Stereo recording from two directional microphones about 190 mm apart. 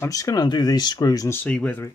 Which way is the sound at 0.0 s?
20° left (ahead or behind).